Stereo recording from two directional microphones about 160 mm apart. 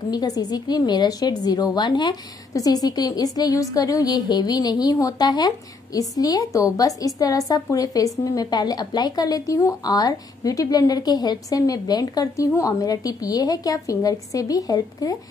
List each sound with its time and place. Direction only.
0.1 s a woman's voice: 25° left (ahead or behind)